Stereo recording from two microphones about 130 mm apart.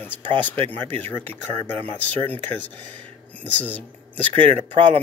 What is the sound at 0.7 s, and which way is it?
Speech, 15° left (ahead or behind).